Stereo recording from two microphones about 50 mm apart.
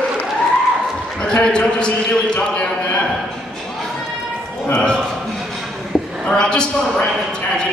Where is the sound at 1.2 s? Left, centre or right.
Centre.